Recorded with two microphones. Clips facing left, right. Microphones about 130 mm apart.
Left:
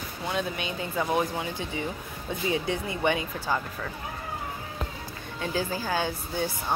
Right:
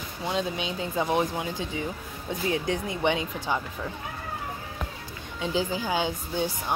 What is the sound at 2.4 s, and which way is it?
Speech, 5° left (ahead or behind).